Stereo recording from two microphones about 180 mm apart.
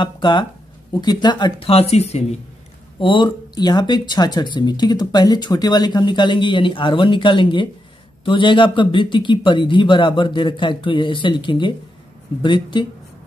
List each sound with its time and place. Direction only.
0.0 s speech: 25° left (ahead or behind)